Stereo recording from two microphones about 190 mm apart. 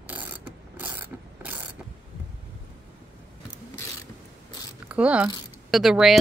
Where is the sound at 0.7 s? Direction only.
10° right (ahead or behind).